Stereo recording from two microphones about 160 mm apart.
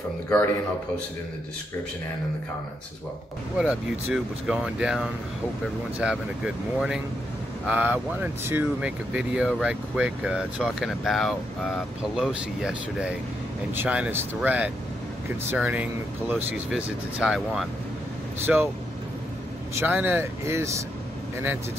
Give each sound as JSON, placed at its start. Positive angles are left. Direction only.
{"t": 3.5, "sound": "speech", "side_deg": -5}
{"t": 18.4, "sound": "speech", "side_deg": -15}
{"t": 19.7, "sound": "speech", "side_deg": -15}